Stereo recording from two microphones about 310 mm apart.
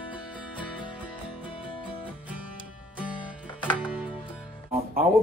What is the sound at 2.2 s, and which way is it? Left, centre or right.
Music, centre.